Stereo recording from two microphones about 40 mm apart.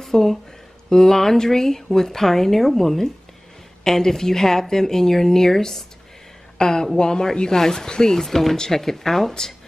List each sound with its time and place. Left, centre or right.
0.0 s speech: centre